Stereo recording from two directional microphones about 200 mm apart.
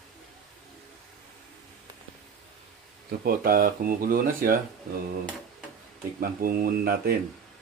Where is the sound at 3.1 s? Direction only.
45° right (ahead or behind).